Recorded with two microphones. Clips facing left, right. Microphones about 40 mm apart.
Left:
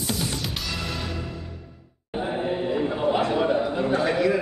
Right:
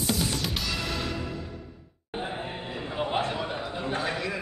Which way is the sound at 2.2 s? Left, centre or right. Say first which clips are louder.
Left 10 dB; left.